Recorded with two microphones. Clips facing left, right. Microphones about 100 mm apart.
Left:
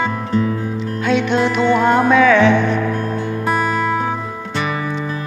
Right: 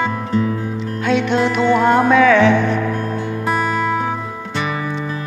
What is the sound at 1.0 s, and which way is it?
Music, 75° right (ahead or behind).